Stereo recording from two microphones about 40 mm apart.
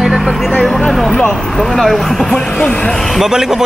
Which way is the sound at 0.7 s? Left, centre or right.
Centre.